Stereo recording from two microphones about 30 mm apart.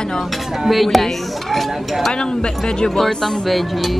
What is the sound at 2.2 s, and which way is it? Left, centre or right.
Speech, left.